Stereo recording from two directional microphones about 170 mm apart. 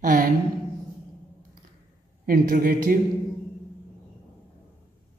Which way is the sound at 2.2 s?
55° right (ahead or behind).